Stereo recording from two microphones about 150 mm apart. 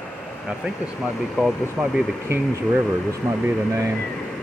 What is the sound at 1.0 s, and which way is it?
Speech, 5° right (ahead or behind).